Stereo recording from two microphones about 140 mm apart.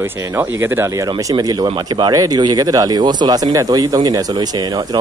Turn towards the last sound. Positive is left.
turn(degrees=-30)  # may be behind; listen again after turning